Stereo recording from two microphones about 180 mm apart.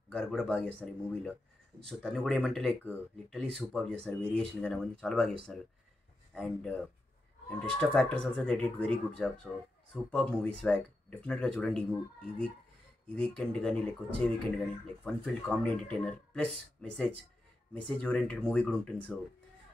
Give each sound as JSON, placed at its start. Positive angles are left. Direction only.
{"t": 0.1, "sound": "speech", "side_deg": 5}